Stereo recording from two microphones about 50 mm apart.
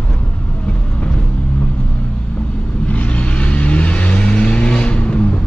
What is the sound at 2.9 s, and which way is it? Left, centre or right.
Vehicle, left.